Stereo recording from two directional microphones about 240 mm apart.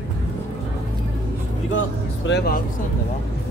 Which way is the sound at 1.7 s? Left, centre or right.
Left.